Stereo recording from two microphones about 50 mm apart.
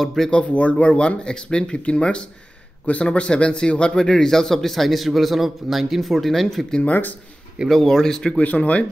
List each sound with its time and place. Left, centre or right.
0.0 s speech: centre
0.3 s a man's voice: left; by 6.8 s centre
6.8 s speech: left
7.7 s a man's voice: centre
8.4 s speech: left